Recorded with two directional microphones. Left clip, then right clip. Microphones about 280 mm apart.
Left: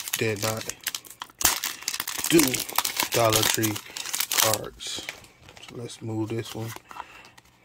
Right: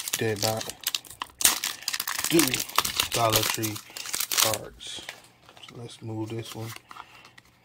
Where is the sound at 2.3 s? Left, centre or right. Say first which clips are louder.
Left 3 dB; centre.